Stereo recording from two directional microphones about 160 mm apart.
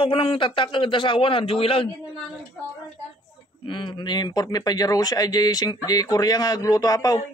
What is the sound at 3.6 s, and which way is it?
Speech, 30° left (ahead or behind).